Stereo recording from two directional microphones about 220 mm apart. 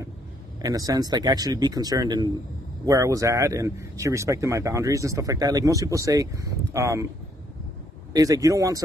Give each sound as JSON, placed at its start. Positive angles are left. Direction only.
{"t": 0.6, "sound": "a man's voice", "side_deg": -15}
{"t": 8.1, "sound": "a man's voice", "side_deg": -15}